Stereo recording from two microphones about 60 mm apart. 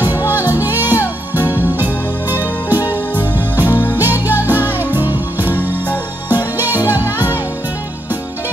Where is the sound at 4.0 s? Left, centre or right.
Right.